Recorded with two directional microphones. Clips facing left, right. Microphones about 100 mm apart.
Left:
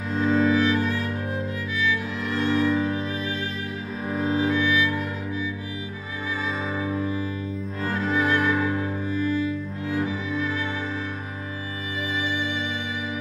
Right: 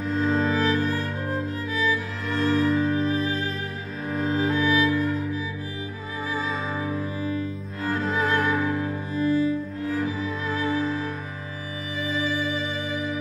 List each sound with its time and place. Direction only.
0.1 s music: centre (ahead or behind)
0.5 s music: 35° right (ahead or behind)
2.4 s music: centre (ahead or behind)
3.0 s music: 35° right (ahead or behind)
4.1 s cello: centre (ahead or behind)
4.4 s music: 35° right (ahead or behind)
8.1 s music: centre (ahead or behind)
9.1 s cello: 35° right (ahead or behind)
10.0 s music: 35° right (ahead or behind)
10.7 s music: centre (ahead or behind)
12.3 s music: 35° right (ahead or behind)